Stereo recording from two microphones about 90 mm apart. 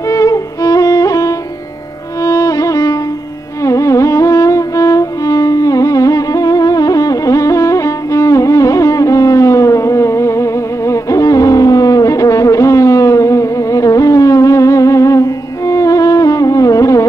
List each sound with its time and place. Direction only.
0.1 s music: 35° left (ahead or behind)